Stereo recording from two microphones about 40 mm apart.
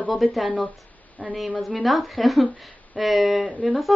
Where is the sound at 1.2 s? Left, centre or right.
Right.